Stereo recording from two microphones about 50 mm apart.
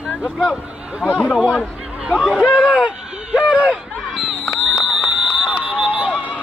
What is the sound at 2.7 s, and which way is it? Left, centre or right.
Run, centre.